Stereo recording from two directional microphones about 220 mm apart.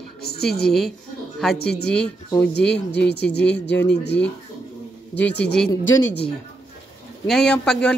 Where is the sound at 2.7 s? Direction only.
50° left (ahead or behind).